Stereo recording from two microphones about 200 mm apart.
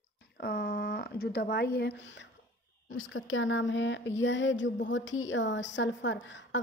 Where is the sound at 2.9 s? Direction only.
90° left.